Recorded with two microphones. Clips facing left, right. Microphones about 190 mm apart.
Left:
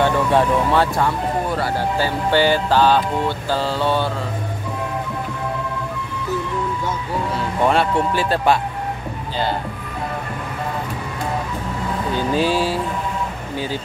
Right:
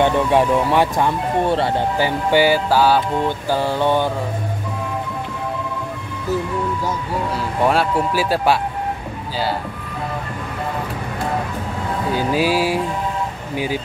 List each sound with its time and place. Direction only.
0.0 s speech: 15° right (ahead or behind)
1.4 s speech: 25° right (ahead or behind)
7.3 s speech: 5° right (ahead or behind)
12.1 s speech: 5° right (ahead or behind)